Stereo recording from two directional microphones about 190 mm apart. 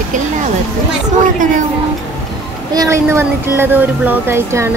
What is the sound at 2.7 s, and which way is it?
Speech, 15° right (ahead or behind).